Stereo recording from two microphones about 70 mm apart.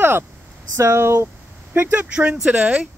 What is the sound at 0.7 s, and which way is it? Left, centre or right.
Speech, right.